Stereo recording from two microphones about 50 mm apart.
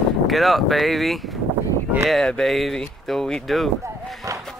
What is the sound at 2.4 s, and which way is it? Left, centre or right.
Speech, centre.